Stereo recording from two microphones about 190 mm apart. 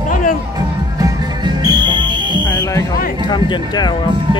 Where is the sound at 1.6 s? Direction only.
20° right (ahead or behind).